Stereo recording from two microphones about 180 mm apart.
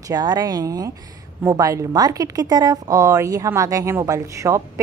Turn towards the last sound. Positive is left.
turn(degrees=-15)  # may be behind; listen again after turning